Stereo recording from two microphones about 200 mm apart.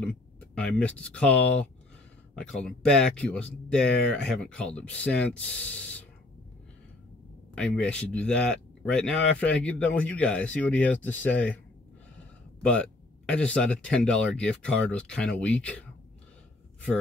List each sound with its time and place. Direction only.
0.6 s speech: 5° left (ahead or behind)
7.5 s speech: 5° left (ahead or behind)
13.3 s speech: 5° left (ahead or behind)